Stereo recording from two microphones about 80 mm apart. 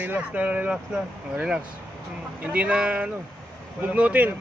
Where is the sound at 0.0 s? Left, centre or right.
Centre.